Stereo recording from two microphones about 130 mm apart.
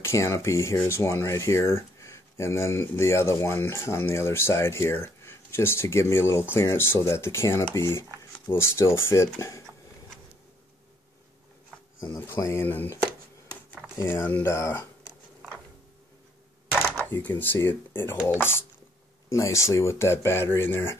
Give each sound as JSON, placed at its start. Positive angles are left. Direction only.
{"t": 0.0, "sound": "speech", "side_deg": 20}
{"t": 12.1, "sound": "speech", "side_deg": 20}
{"t": 16.9, "sound": "speech", "side_deg": 15}